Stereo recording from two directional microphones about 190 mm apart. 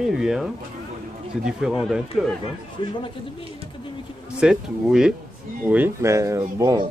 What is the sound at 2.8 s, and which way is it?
Speech, 25° left (ahead or behind).